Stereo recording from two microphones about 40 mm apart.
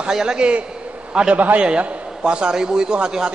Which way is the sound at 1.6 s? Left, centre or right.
Right.